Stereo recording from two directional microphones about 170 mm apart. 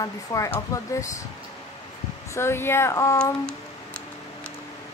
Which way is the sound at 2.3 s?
15° left (ahead or behind).